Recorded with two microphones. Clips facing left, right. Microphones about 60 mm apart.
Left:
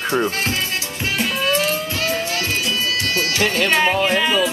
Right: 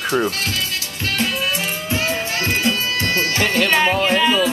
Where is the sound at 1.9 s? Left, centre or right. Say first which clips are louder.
Even; right.